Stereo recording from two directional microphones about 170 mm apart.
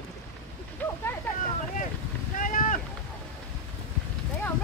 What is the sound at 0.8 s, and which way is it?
Boat, 10° left (ahead or behind).